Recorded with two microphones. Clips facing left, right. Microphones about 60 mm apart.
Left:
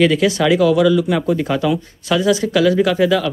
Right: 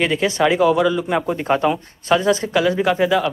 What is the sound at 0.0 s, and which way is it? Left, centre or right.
Speech, right.